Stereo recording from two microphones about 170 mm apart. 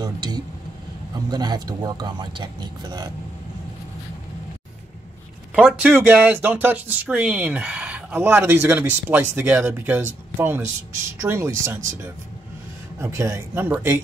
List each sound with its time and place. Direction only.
0.0 s a sound: 25° right (ahead or behind)
1.3 s speech: 25° right (ahead or behind)
5.5 s speech: 5° right (ahead or behind)
13.0 s speech: 15° right (ahead or behind)